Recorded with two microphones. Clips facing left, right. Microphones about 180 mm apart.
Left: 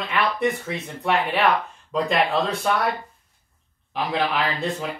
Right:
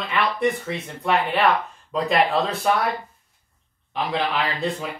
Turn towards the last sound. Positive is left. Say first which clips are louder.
# even
turn(degrees=0)  # may be behind; listen again after turning